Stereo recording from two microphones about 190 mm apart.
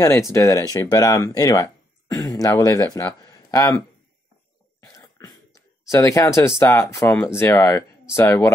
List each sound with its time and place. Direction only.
0.3 s speech: 15° left (ahead or behind)
4.7 s a sound: 20° left (ahead or behind)
6.6 s speech: 15° left (ahead or behind)